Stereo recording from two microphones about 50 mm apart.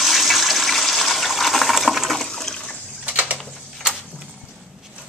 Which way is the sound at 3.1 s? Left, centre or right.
Right.